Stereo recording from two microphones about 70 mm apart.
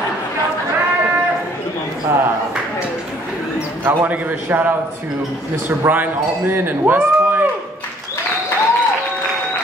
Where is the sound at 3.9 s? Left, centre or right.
Right.